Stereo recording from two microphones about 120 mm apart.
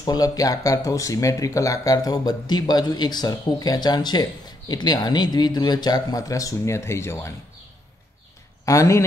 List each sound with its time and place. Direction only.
0.0 s speech: 30° left (ahead or behind)
8.6 s a man's voice: 25° left (ahead or behind)